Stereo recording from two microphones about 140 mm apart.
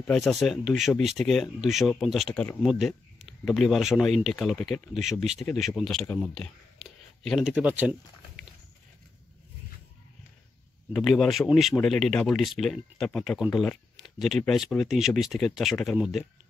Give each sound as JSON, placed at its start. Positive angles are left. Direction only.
{"t": 0.0, "sound": "speech", "side_deg": 0}
{"t": 7.5, "sound": "speech", "side_deg": -10}
{"t": 10.9, "sound": "speech", "side_deg": 0}